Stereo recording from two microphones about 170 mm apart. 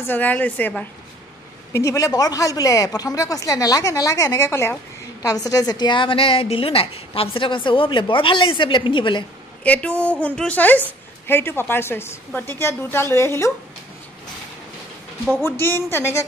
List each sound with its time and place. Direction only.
0.0 s a woman's voice: 10° left (ahead or behind); by 9.2 s 30° left (ahead or behind)
9.6 s a woman's voice: 10° left (ahead or behind)
15.6 s a woman's voice: 10° left (ahead or behind)